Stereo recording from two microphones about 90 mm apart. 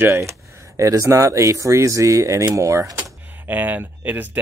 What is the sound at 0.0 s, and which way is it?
Speech, 30° right (ahead or behind).